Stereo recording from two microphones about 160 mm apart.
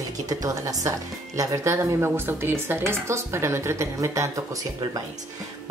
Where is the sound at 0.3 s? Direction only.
20° right (ahead or behind).